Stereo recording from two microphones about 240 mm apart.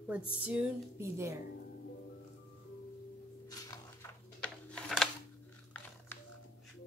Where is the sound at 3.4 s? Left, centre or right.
Centre.